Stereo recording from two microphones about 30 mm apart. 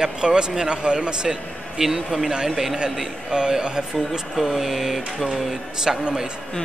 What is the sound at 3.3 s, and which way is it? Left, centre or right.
Speech, right.